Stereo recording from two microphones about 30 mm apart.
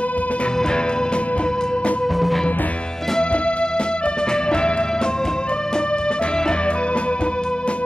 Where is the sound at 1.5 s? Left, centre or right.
Left.